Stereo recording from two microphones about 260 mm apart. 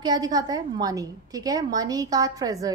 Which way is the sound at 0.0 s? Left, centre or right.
Centre.